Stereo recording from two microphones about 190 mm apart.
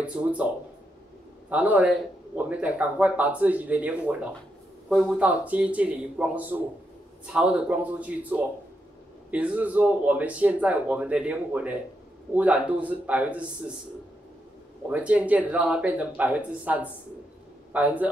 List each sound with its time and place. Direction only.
0.0 s speech: 5° right (ahead or behind)
1.5 s speech: 10° right (ahead or behind)
14.9 s speech: 10° right (ahead or behind)